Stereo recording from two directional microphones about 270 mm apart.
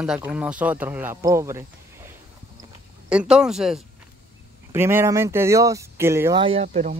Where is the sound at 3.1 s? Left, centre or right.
Centre.